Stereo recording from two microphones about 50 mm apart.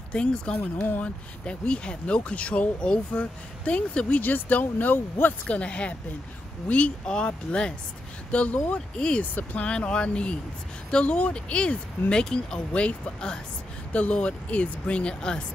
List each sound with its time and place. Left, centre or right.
0.1 s speech: centre
0.6 s speech: left
1.0 s speech: left
4.2 s speech: left
5.5 s speech: left
8.9 s speech: centre
9.2 s speech: left; by 15.4 s centre